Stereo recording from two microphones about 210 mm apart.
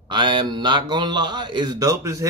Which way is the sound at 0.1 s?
20° right (ahead or behind).